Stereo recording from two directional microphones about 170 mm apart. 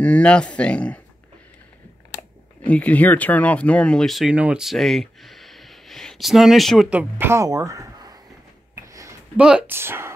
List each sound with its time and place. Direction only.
0.0 s speech: 5° left (ahead or behind)
2.6 s speech: 10° left (ahead or behind); by 8.2 s 20° right (ahead or behind)
8.7 s a sound: 20° right (ahead or behind)
9.4 s speech: 5° right (ahead or behind)